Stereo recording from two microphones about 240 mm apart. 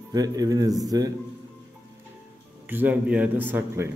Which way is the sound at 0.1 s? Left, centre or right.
Centre.